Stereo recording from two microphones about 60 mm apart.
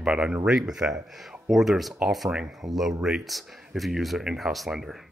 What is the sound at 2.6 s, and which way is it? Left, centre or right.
Speech, right.